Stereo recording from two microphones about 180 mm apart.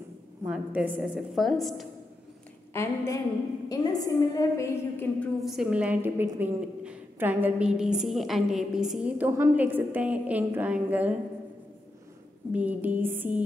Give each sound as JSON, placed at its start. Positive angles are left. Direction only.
{"t": 0.5, "sound": "a woman's voice", "side_deg": -5}
{"t": 2.7, "sound": "a woman's voice", "side_deg": 15}
{"t": 5.4, "sound": "a woman's voice", "side_deg": 0}
{"t": 12.5, "sound": "a woman's voice", "side_deg": -10}